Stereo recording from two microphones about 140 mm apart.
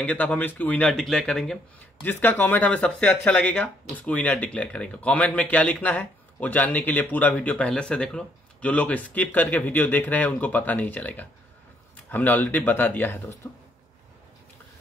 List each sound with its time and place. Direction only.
0.0 s speech: 10° left (ahead or behind)
2.0 s speech: 15° left (ahead or behind)